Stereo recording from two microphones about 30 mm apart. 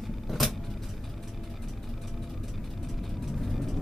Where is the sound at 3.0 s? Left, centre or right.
Centre.